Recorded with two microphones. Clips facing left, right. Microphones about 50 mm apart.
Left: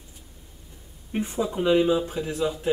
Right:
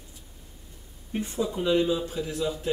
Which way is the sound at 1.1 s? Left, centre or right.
Left.